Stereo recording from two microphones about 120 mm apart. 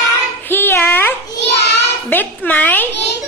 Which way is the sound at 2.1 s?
10° left (ahead or behind).